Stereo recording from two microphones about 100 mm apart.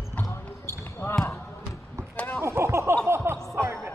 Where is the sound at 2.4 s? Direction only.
25° right (ahead or behind).